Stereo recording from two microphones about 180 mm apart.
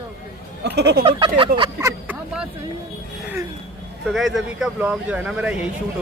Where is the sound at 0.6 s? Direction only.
70° right (ahead or behind).